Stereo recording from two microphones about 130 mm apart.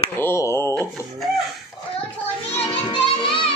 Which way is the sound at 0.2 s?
20° left (ahead or behind).